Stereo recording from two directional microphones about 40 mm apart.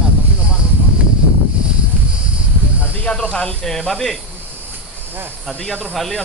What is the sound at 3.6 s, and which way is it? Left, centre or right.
Speech, centre.